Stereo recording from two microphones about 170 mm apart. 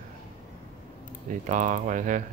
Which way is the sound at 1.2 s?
50° right (ahead or behind).